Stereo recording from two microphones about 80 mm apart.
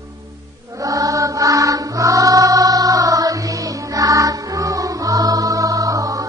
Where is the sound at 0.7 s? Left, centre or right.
Right.